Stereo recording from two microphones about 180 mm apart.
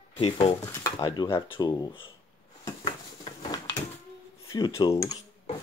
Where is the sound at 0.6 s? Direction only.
15° left (ahead or behind).